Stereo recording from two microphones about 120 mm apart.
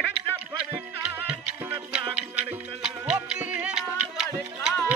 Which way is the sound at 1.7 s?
10° right (ahead or behind).